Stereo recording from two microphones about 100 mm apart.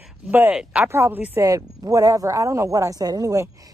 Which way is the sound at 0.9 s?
25° right (ahead or behind).